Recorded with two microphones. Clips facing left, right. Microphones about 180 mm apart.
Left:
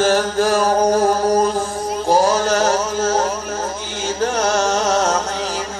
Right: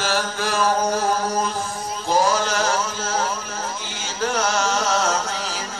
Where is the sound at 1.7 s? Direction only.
55° left (ahead or behind).